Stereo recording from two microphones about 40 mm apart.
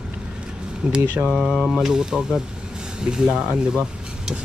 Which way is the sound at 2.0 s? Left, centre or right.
Centre.